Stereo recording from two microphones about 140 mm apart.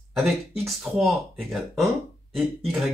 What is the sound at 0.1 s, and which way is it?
Speech, centre (ahead or behind).